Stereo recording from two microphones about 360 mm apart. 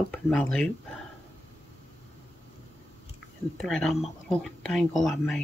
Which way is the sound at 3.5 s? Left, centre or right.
Centre.